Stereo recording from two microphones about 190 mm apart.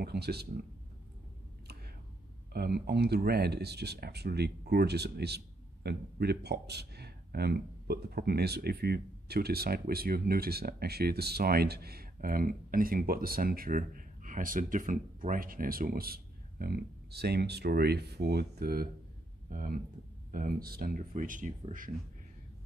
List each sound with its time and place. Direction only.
0.0 s speech: 55° right (ahead or behind)
2.5 s speech: 55° right (ahead or behind)
20.2 s a sound: 45° right (ahead or behind)
20.6 s speech: 50° right (ahead or behind)